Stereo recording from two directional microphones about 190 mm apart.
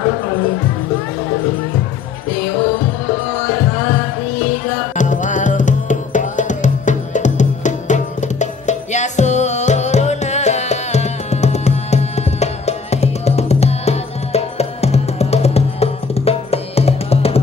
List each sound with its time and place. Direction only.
4.9 s music: 40° left (ahead or behind)